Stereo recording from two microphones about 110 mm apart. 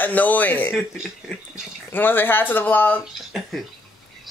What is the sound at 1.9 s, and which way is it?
Speech, 20° left (ahead or behind).